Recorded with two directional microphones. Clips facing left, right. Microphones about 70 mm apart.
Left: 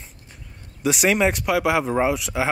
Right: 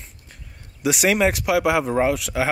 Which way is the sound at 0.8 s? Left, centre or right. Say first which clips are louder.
Even; centre.